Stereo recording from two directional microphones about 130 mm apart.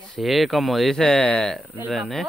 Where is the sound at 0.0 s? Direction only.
Centre (ahead or behind).